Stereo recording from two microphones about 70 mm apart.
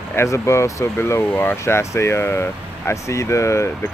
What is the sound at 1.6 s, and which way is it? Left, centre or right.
Speech, left.